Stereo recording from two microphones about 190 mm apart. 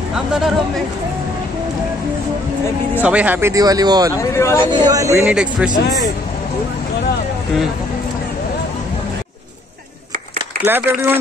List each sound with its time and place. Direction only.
0.1 s speech: 5° right (ahead or behind)
3.0 s speech: 5° right (ahead or behind)
4.2 s speech: 15° left (ahead or behind)
4.6 s speech: 20° right (ahead or behind)
5.2 s a man's voice: 5° right (ahead or behind)
10.6 s speech: 10° right (ahead or behind)